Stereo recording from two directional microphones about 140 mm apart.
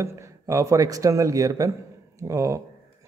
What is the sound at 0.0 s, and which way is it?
A man's voice, 20° right (ahead or behind).